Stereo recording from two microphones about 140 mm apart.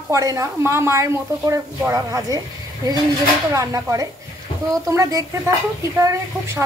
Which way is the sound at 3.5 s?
20° right (ahead or behind).